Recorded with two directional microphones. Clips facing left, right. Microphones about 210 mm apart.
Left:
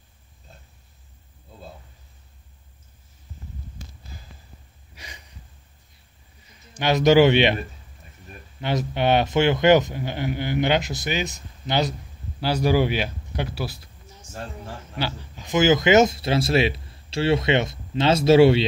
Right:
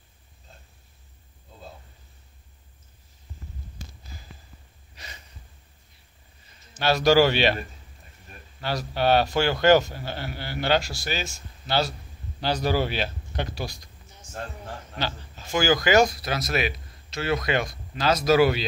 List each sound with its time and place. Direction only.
4.9 s a sound: 10° left (ahead or behind)
6.7 s speech: 15° left (ahead or behind)
8.5 s speech: 20° left (ahead or behind)
15.0 s speech: 10° left (ahead or behind); by 18.7 s 25° left (ahead or behind)